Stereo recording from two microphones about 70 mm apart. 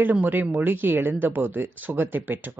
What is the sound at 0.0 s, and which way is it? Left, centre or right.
Speech, right.